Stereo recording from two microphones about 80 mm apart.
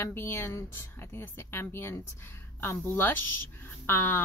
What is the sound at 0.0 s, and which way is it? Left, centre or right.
Speech, left.